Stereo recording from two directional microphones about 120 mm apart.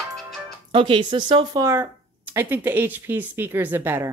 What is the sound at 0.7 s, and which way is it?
Speech, 45° right (ahead or behind).